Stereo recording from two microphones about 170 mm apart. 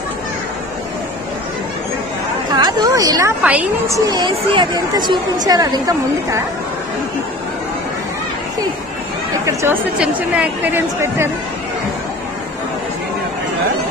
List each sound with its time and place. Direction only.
2.5 s speech: 25° right (ahead or behind)
4.1 s speech: 25° right (ahead or behind)
9.5 s chatter: 15° right (ahead or behind)
9.9 s a woman's voice: 10° right (ahead or behind)